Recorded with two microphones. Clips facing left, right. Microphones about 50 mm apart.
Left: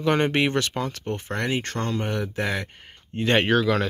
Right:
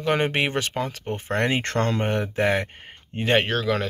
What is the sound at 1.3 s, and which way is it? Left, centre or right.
Speech, right.